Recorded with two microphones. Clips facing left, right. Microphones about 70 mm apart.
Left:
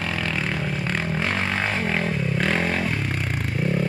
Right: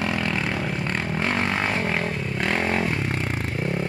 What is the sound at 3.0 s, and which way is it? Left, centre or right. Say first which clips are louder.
Scrape: right 1 dB; right.